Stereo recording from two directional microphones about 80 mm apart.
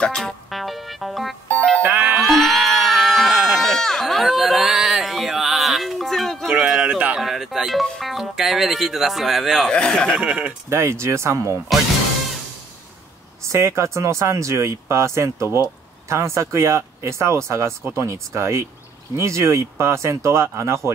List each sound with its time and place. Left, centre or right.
0.0 s music: centre
1.5 s music: centre
1.8 s music: right
2.1 s a sound: centre
8.0 s speech: centre
9.7 s speech: centre
10.2 s speech: centre
10.7 s speech: right
13.4 s speech: right